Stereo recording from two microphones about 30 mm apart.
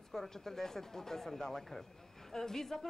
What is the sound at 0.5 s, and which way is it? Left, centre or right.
A woman's voice, centre.